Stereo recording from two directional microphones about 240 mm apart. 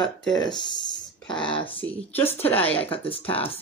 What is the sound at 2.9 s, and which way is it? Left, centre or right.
Speech, left.